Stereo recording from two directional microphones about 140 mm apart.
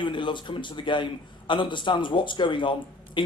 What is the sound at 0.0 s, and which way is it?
Speech, 35° left (ahead or behind).